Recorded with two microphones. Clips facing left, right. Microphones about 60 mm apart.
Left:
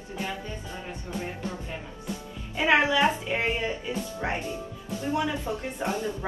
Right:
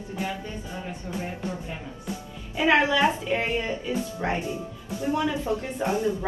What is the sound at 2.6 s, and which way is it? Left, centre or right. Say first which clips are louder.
A woman's voice: right 1 dB; centre.